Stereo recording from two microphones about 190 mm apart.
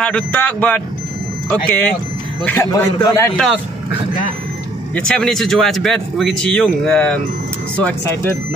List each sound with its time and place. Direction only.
0.0 s speech: 5° left (ahead or behind)
3.3 s speech: centre (ahead or behind)